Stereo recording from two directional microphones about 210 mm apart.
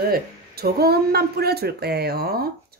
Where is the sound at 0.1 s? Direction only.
45° right (ahead or behind).